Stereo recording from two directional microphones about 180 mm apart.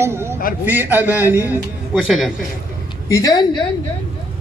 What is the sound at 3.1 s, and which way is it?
Speech, 20° left (ahead or behind).